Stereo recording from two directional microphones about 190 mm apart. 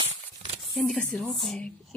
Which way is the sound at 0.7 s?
Centre (ahead or behind).